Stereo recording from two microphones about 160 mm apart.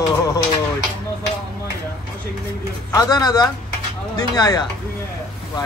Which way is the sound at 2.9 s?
25° left (ahead or behind).